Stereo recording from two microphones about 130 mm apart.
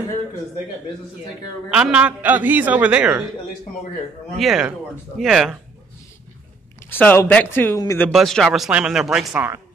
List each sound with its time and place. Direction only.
1.7 s a man's voice: 10° right (ahead or behind)
4.4 s speech: 5° right (ahead or behind)
6.9 s speech: 15° left (ahead or behind)
7.7 s speech: 25° left (ahead or behind)
8.1 s speech: centre (ahead or behind)